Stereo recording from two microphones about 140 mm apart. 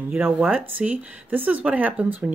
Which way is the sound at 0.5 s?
10° right (ahead or behind).